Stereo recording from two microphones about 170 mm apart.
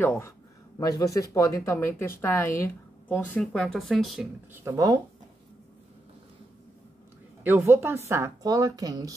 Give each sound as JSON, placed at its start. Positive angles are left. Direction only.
{"t": 0.0, "sound": "speech", "side_deg": 10}
{"t": 4.6, "sound": "a woman's voice", "side_deg": -20}
{"t": 7.4, "sound": "a woman's voice", "side_deg": -10}